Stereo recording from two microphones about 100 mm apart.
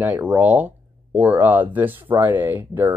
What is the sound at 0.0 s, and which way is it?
Speech, 15° right (ahead or behind).